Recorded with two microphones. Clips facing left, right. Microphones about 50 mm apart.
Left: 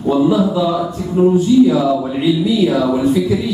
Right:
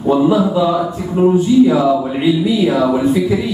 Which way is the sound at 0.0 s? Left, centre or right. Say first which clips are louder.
Right 1 dB; centre.